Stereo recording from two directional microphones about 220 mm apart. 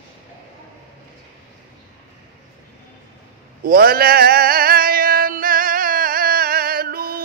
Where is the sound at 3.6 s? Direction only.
40° right (ahead or behind).